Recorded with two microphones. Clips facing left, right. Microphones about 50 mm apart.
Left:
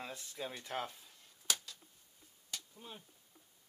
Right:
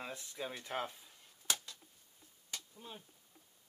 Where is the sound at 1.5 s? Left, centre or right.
Right.